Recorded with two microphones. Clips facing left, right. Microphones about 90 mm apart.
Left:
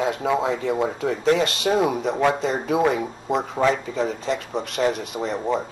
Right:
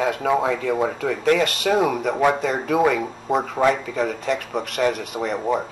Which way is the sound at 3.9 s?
60° right (ahead or behind).